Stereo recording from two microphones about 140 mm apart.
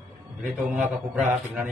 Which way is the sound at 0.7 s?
10° right (ahead or behind).